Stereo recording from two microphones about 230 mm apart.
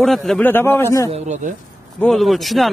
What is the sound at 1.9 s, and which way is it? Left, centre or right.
Speech, centre.